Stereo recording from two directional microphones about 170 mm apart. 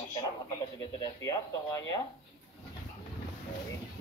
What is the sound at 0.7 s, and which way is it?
A man's voice, 25° left (ahead or behind).